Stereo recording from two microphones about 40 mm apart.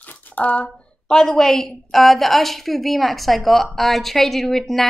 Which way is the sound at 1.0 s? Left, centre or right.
Centre.